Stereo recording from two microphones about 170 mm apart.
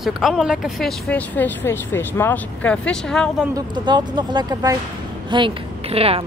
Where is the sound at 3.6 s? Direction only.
25° right (ahead or behind).